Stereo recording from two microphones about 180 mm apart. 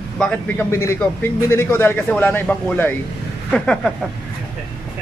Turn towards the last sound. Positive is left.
turn(degrees=5)  # may be behind; listen again after turning